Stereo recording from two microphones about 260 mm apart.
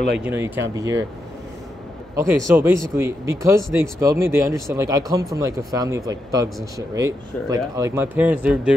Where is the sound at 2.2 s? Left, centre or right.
Centre.